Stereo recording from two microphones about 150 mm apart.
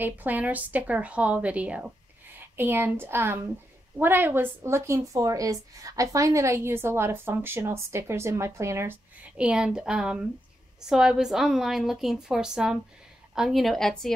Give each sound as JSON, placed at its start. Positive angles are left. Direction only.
{"t": 0.0, "sound": "a woman's voice", "side_deg": -10}
{"t": 9.4, "sound": "a woman's voice", "side_deg": -5}